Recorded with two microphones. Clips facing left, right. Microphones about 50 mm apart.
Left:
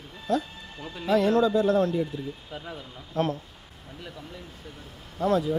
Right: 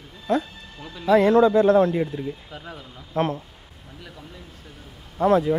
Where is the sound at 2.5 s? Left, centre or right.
Centre.